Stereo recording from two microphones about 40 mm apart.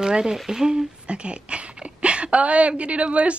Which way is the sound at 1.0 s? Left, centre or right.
Right.